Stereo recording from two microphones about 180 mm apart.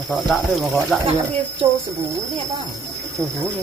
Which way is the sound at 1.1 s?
40° right (ahead or behind).